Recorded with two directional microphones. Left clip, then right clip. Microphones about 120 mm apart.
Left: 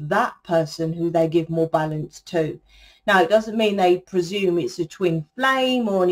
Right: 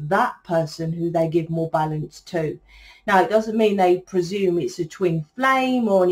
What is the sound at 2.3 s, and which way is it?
Speech, 30° left (ahead or behind).